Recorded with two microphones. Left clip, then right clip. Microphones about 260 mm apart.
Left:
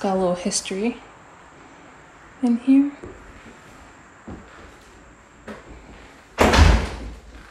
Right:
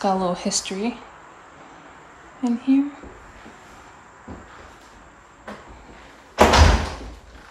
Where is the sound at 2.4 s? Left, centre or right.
Right.